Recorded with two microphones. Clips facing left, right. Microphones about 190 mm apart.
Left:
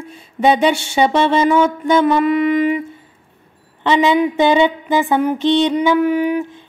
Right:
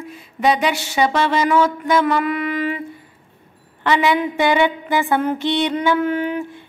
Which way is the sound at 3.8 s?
20° left (ahead or behind).